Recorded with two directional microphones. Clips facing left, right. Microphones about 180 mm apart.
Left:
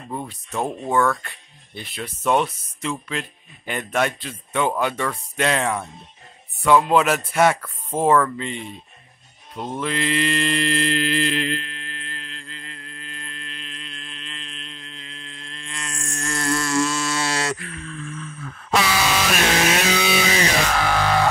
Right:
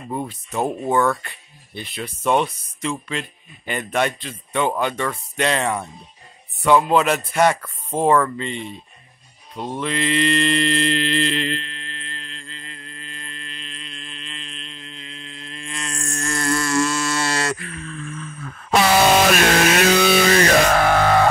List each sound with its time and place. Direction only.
0.5 s speech: 5° right (ahead or behind)
0.8 s speech: 15° right (ahead or behind)
1.1 s speech: centre (ahead or behind)
9.6 s mantra: centre (ahead or behind)
15.9 s a sound: 50° right (ahead or behind)
18.9 s chainsaw: 55° right (ahead or behind)